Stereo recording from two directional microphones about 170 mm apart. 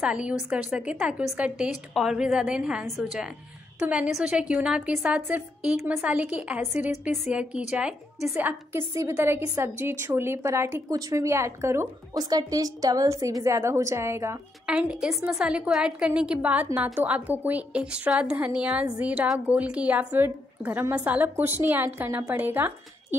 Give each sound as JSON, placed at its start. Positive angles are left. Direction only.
{"t": 0.0, "sound": "a woman's voice", "side_deg": -5}
{"t": 14.7, "sound": "a woman's voice", "side_deg": -5}